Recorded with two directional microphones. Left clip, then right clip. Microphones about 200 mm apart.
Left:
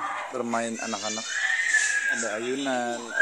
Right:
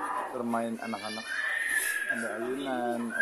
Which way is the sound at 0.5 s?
20° left (ahead or behind).